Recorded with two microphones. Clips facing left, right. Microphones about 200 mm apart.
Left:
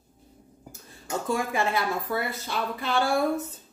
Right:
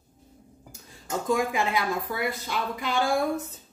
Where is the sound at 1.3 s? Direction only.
15° right (ahead or behind).